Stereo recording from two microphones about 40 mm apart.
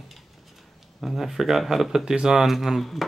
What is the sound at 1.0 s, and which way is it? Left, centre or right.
Speech, centre.